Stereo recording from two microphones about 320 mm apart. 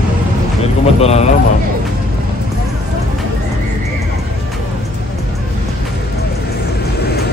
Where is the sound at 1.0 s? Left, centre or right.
Centre.